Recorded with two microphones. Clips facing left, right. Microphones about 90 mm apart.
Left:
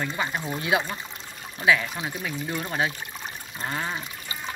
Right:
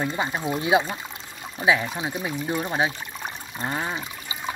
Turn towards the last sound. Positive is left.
turn(degrees=-15)  # may be behind; listen again after turning